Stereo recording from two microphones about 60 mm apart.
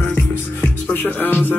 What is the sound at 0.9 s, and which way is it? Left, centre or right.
Music, left.